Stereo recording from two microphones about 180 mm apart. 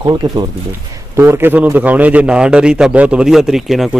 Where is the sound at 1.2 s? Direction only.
10° right (ahead or behind).